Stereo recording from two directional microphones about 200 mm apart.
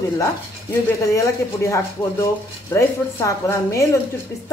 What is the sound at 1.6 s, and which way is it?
Speech, 15° left (ahead or behind).